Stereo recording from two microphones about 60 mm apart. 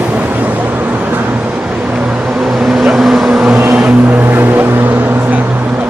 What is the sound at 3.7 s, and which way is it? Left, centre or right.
Vehicle, right.